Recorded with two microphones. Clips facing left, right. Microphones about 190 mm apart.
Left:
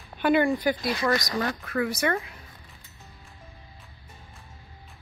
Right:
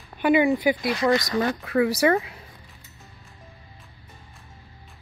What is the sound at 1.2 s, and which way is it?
Speech, 20° right (ahead or behind).